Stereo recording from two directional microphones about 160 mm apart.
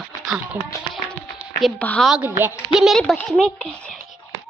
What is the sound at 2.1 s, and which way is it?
A child's voice, 10° right (ahead or behind).